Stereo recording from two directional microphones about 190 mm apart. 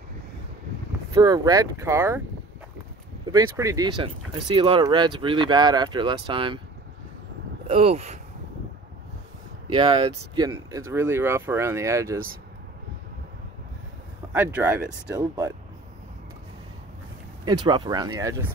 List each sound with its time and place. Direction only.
1.1 s speech: 20° right (ahead or behind)
3.3 s speech: 20° right (ahead or behind)
7.6 s speech: 30° right (ahead or behind)
9.7 s speech: 25° right (ahead or behind)
14.3 s speech: 10° right (ahead or behind)
17.5 s speech: 25° right (ahead or behind)